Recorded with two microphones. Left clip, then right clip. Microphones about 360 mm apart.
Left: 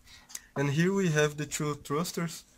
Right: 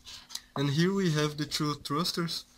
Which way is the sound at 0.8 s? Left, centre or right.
Centre.